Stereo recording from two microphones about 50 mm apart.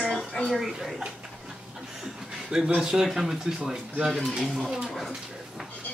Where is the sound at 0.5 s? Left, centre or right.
Centre.